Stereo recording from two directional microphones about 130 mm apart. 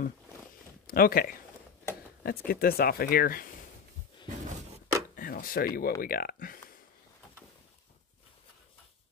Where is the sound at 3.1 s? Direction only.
90° left.